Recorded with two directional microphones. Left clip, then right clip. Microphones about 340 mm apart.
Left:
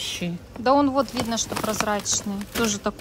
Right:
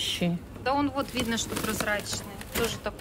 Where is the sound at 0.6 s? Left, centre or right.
Centre.